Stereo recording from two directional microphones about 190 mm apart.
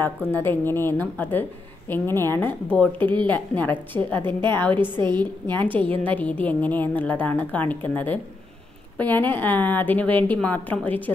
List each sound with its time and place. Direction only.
0.3 s a woman's voice: 10° left (ahead or behind)
4.3 s a woman's voice: 25° right (ahead or behind)
5.5 s a woman's voice: 10° left (ahead or behind)